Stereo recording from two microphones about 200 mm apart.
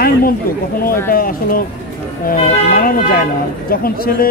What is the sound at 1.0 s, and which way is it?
Speech, 45° left (ahead or behind).